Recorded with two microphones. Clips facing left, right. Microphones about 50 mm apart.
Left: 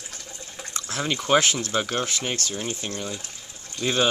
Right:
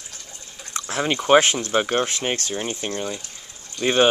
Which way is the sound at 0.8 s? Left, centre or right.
Right.